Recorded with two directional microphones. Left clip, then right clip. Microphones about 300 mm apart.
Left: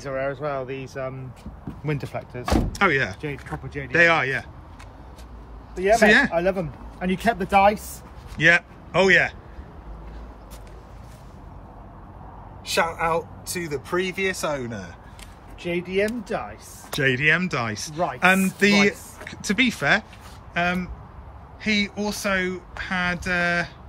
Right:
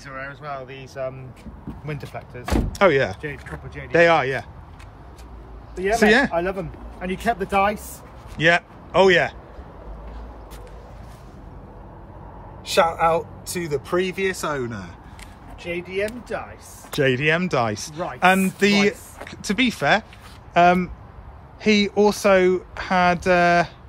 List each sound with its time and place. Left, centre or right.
0.0 s speech: centre
2.7 s speech: centre
5.8 s speech: centre
6.5 s speech: left
8.4 s a man's voice: centre
12.6 s speech: centre
15.6 s speech: left
16.9 s speech: centre